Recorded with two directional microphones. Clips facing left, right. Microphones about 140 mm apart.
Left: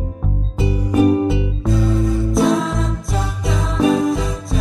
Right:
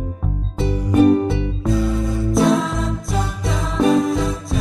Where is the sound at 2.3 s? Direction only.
Centre (ahead or behind).